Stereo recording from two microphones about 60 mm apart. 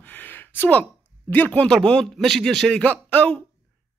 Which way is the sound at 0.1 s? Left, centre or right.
Left.